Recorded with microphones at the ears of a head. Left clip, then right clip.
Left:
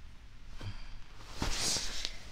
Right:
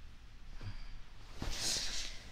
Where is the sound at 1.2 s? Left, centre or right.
Left.